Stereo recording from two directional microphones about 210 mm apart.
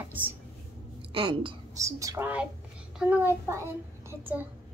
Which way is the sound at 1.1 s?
25° right (ahead or behind).